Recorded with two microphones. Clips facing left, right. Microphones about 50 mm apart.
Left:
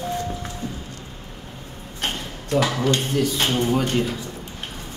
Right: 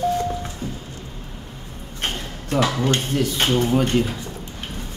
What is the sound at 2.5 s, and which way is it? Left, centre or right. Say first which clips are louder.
Speech: even; right.